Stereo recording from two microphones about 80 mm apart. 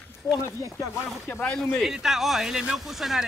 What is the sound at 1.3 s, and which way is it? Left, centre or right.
Speech, centre.